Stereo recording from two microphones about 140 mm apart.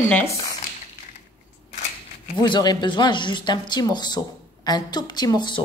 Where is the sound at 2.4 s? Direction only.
35° left (ahead or behind).